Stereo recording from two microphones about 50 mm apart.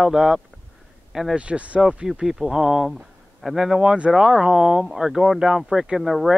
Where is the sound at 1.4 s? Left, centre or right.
Right.